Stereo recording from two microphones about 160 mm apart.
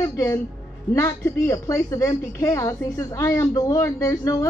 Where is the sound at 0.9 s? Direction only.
20° left (ahead or behind).